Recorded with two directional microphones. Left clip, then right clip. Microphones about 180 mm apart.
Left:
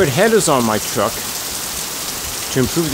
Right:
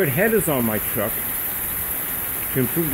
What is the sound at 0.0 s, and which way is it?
Speech, 15° left (ahead or behind).